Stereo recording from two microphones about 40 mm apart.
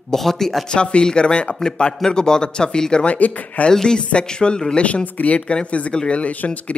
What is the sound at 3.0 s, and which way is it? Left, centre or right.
Speech, left.